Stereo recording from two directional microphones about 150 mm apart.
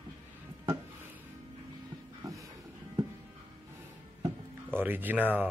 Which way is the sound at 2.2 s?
25° right (ahead or behind).